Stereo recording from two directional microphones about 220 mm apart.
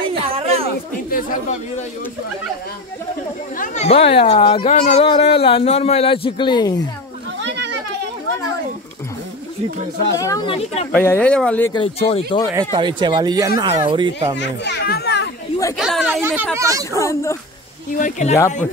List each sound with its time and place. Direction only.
0.2 s a sound: 25° right (ahead or behind)
1.1 s speech: 35° left (ahead or behind)
3.5 s speech: 35° left (ahead or behind); by 6.9 s 20° left (ahead or behind)
7.4 s children playing: 50° right (ahead or behind)
10.1 s speech: 15° left (ahead or behind)
10.9 s speech: 10° left (ahead or behind)
11.7 s speech: 25° left (ahead or behind)
12.4 s speech: 15° right (ahead or behind)
14.4 s speech: 50° left (ahead or behind)
15.8 s speech: centre (ahead or behind)
16.9 s speech: 15° left (ahead or behind)
17.9 s speech: 35° left (ahead or behind)